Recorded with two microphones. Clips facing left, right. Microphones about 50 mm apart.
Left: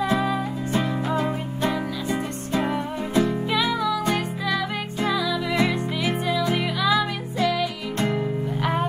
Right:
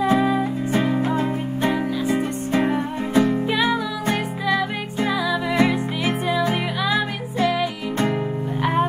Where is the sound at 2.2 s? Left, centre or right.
Right.